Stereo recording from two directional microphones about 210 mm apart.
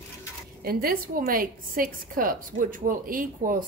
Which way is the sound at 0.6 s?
45° right (ahead or behind).